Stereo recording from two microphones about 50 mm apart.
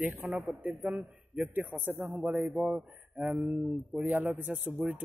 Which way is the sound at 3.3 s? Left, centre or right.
Right.